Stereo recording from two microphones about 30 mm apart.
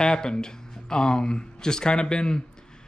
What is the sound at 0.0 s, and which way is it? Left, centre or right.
Speech, left.